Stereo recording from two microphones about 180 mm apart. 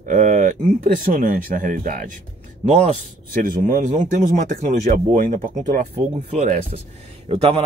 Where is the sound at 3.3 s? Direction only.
50° right (ahead or behind); by 7.6 s 35° right (ahead or behind).